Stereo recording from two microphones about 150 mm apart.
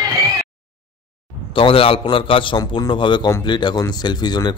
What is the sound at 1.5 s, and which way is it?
A man's voice, 35° left (ahead or behind).